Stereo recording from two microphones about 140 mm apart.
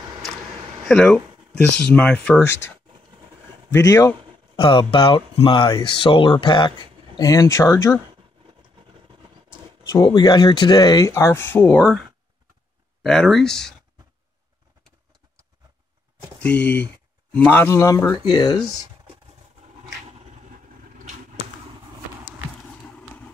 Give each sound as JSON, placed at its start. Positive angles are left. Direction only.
{"t": 0.8, "sound": "speech", "side_deg": 5}
{"t": 3.7, "sound": "speech", "side_deg": 20}
{"t": 4.6, "sound": "speech", "side_deg": 30}
{"t": 10.0, "sound": "speech", "side_deg": 30}
{"t": 13.0, "sound": "speech", "side_deg": 5}
{"t": 16.3, "sound": "speech", "side_deg": 10}